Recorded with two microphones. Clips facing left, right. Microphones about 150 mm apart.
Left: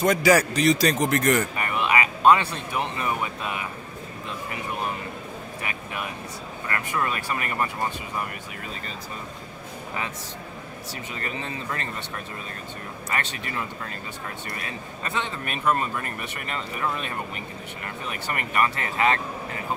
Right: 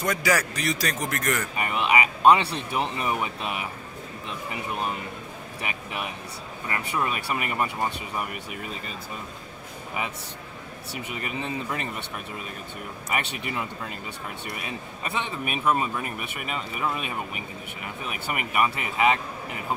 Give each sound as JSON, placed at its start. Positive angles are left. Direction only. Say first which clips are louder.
{"t": 0.0, "sound": "a man's voice", "louder": "left 6 dB", "side_deg": 25}
{"t": 1.6, "sound": "a sound", "louder": "even", "side_deg": -20}
{"t": 2.5, "sound": "speech", "louder": "right 1 dB", "side_deg": -20}
{"t": 5.6, "sound": "speech", "louder": "right 1 dB", "side_deg": -20}
{"t": 11.1, "sound": "speech", "louder": "right 2 dB", "side_deg": -15}
{"t": 13.1, "sound": "speech", "louder": "right 1 dB", "side_deg": -15}